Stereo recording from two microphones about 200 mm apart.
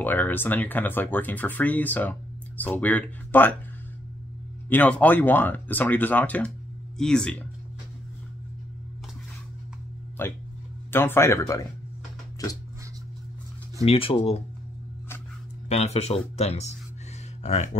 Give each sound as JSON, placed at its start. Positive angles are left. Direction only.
{"t": 0.0, "sound": "speech", "side_deg": 10}
{"t": 4.6, "sound": "speech", "side_deg": 10}
{"t": 10.2, "sound": "speech", "side_deg": 10}
{"t": 13.8, "sound": "speech", "side_deg": 30}
{"t": 15.7, "sound": "speech", "side_deg": 35}